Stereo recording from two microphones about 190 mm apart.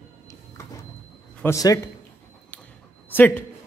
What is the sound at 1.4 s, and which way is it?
Speech, 15° left (ahead or behind).